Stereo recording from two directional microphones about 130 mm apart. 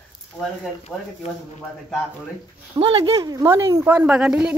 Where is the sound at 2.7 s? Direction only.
45° right (ahead or behind).